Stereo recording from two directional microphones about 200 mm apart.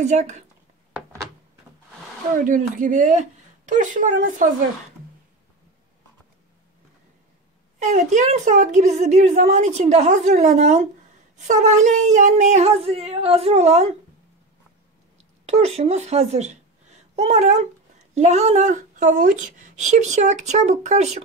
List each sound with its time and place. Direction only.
0.0 s a woman's voice: 35° right (ahead or behind)
2.3 s a woman's voice: 40° right (ahead or behind)
7.8 s a woman's voice: 35° right (ahead or behind)
15.4 s a woman's voice: 30° right (ahead or behind)